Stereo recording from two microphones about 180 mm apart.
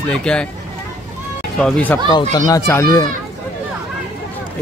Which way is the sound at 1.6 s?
5° left (ahead or behind).